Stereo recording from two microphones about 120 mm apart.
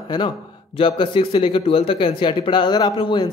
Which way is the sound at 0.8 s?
45° left (ahead or behind).